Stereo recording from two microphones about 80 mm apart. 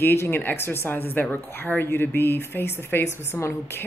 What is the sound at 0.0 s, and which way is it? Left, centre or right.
A woman's voice, left.